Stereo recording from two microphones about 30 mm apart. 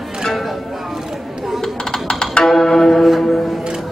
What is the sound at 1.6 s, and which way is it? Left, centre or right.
Music, left.